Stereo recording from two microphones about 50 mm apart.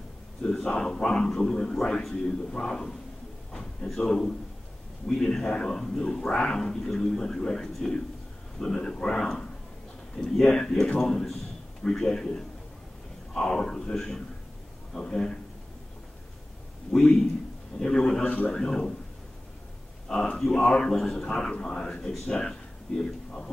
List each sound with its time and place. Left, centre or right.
0.4 s a man's voice: centre
16.9 s a man's voice: centre
18.2 s a man's voice: left
18.5 s a man's voice: centre
20.1 s a man's voice: centre